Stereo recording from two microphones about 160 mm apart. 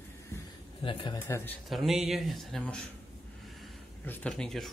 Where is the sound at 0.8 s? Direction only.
30° left (ahead or behind).